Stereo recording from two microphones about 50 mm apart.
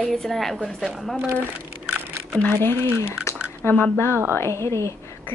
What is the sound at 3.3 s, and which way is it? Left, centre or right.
Squish, left.